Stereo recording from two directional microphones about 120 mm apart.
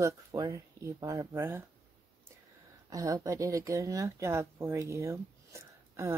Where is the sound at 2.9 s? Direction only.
30° right (ahead or behind).